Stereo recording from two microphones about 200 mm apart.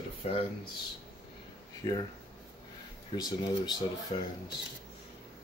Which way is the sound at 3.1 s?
20° left (ahead or behind).